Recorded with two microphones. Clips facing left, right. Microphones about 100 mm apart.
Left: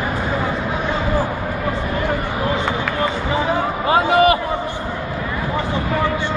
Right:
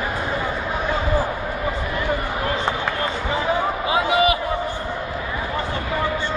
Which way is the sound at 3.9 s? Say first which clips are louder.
Left 5 dB; 45° left (ahead or behind).